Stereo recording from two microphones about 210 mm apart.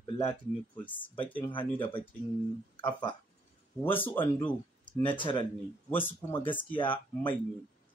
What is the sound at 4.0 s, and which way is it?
Speech, 10° left (ahead or behind).